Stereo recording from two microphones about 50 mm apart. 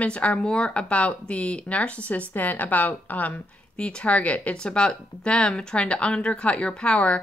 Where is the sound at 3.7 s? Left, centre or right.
Left.